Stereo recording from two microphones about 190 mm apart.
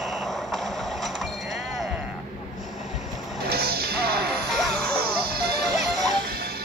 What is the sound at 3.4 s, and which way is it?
Music, 55° right (ahead or behind).